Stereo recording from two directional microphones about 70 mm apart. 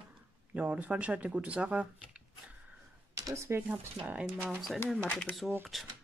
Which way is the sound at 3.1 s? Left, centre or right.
Right.